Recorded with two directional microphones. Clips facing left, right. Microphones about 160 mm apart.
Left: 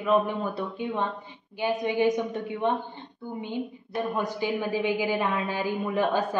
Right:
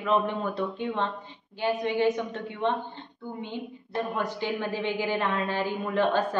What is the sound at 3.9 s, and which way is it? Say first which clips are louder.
A woman's voice: left 1 dB; 10° left (ahead or behind).